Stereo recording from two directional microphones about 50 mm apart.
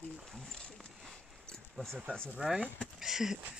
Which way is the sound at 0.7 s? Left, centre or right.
Centre.